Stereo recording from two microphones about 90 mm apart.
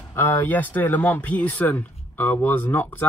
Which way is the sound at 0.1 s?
25° left (ahead or behind).